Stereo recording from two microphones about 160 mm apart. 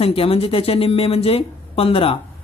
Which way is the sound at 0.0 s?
35° left (ahead or behind).